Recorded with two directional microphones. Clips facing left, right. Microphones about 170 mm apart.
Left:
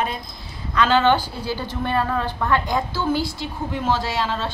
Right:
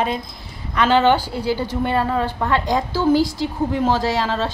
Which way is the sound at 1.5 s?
20° right (ahead or behind).